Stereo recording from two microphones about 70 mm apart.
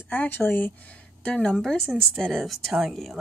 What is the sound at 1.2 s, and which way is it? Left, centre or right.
Speech, centre.